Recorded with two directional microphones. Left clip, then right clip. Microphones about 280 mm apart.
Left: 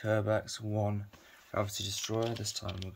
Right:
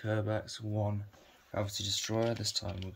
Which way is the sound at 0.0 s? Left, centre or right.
Centre.